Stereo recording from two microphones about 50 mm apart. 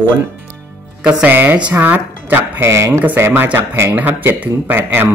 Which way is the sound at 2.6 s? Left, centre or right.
Right.